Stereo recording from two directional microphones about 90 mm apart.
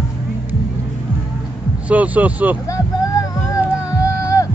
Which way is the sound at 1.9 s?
15° right (ahead or behind).